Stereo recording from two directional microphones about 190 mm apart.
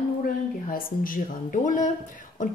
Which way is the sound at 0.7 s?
45° left (ahead or behind).